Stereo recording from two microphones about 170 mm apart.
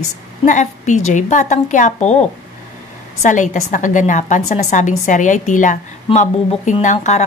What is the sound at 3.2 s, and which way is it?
A woman's voice, 45° left (ahead or behind).